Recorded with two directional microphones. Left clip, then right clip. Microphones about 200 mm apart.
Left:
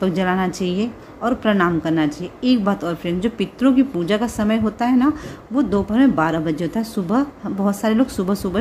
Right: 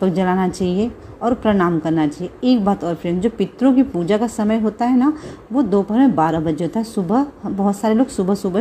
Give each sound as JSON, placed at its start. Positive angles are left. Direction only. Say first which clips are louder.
{"t": 0.0, "sound": "a woman's voice", "louder": "right 2 dB", "side_deg": -10}